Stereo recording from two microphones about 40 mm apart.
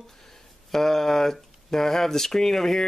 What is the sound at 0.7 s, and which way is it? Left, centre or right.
Speech, centre.